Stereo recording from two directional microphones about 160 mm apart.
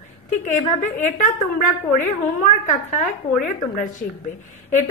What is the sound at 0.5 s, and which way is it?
A woman's voice, 50° left (ahead or behind).